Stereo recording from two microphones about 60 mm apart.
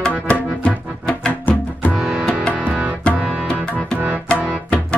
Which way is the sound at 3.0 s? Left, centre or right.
Centre.